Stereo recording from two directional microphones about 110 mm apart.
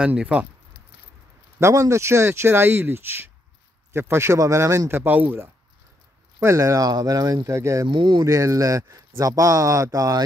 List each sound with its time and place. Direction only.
0.0 s speech: 10° right (ahead or behind)
1.6 s speech: 25° right (ahead or behind)
6.4 s speech: 30° right (ahead or behind)
7.9 s speech: 45° right (ahead or behind)
8.2 s speech: 30° right (ahead or behind)